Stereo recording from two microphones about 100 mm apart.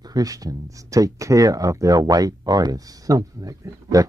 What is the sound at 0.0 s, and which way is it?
Speech, 40° right (ahead or behind).